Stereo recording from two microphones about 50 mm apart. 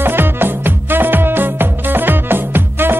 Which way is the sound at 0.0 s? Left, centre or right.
Right.